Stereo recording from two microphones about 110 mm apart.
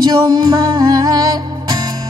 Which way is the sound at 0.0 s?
40° right (ahead or behind).